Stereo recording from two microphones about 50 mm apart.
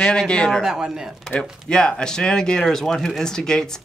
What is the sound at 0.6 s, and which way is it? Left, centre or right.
Speech, centre.